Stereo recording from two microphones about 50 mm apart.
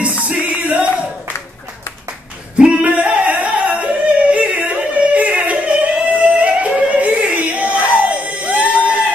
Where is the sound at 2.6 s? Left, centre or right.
Right.